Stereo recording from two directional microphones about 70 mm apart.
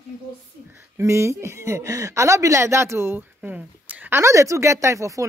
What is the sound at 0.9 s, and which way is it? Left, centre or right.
A woman's voice, right.